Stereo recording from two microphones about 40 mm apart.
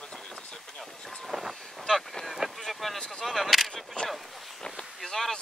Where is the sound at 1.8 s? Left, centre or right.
Centre.